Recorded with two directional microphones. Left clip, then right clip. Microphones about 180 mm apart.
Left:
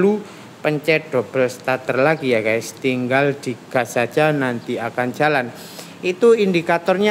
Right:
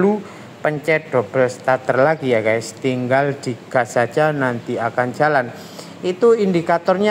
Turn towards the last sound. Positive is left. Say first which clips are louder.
# right 1 dB
turn(degrees=15)  # may be behind; listen again after turning